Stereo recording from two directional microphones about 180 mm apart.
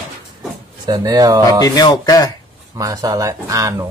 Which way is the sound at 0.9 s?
20° right (ahead or behind).